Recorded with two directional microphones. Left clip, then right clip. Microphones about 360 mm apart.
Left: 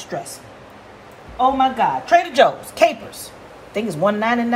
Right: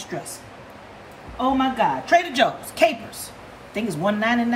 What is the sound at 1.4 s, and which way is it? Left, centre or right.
A woman's voice, centre.